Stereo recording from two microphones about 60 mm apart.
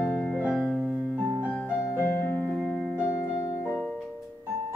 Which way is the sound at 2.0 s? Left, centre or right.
Left.